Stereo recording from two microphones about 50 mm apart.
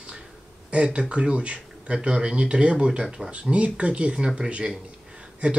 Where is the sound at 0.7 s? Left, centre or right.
Right.